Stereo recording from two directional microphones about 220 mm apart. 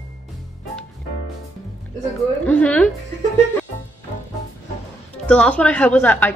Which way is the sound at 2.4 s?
5° left (ahead or behind).